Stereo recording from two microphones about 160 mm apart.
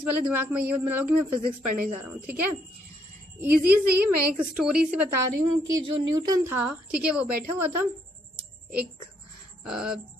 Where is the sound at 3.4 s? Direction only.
10° right (ahead or behind).